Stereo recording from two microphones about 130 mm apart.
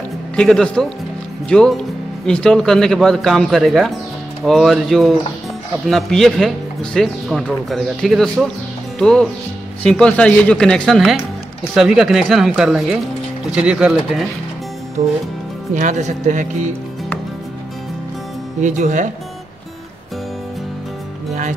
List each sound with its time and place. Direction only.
0.4 s speech: 5° left (ahead or behind)
15.0 s speech: 70° right (ahead or behind)
18.6 s speech: 70° right (ahead or behind)